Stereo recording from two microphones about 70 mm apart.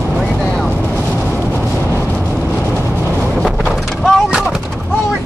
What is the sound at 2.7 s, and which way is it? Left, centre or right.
Vehicle, centre.